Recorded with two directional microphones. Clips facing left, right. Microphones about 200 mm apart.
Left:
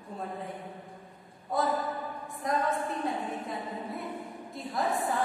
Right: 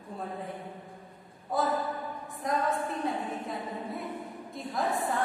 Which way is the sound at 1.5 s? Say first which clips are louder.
Even; centre (ahead or behind).